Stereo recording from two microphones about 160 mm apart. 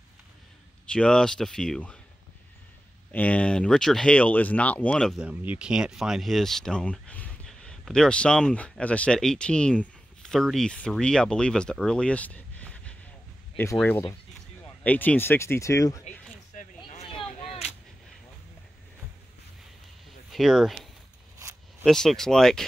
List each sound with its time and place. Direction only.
0.9 s speech: 5° left (ahead or behind)
3.1 s speech: 10° left (ahead or behind)
5.2 s speech: 10° right (ahead or behind); by 16.0 s 20° left (ahead or behind)
17.1 s whip: 35° left (ahead or behind)
20.3 s speech: centre (ahead or behind)